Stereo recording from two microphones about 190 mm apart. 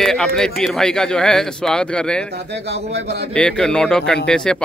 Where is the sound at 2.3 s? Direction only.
65° right (ahead or behind).